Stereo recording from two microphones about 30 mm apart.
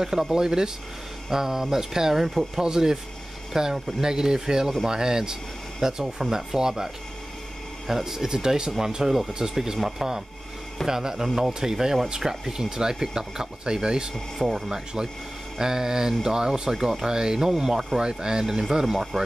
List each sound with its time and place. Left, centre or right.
0.0 s speech: centre
2.6 s speech: right
8.0 s speech: centre
9.8 s speech: centre; by 14.1 s right
14.4 s speech: centre
15.0 s speech: right